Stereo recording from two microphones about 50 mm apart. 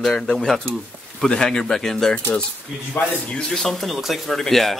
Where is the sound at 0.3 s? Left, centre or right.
Centre.